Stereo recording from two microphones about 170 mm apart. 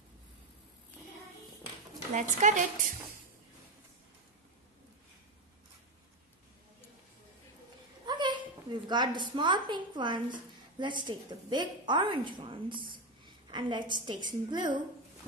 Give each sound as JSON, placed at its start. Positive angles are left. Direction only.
{"t": 2.1, "sound": "a woman's voice", "side_deg": -45}
{"t": 8.0, "sound": "a sound", "side_deg": -25}
{"t": 8.8, "sound": "a woman's voice", "side_deg": -25}